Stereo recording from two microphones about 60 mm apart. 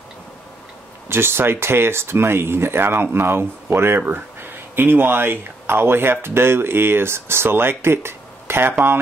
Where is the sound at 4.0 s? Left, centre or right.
Right.